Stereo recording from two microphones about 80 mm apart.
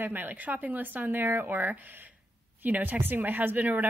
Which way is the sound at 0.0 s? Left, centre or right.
Right.